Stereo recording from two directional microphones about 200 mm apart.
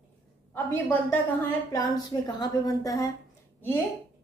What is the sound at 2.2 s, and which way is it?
Speech, 20° left (ahead or behind).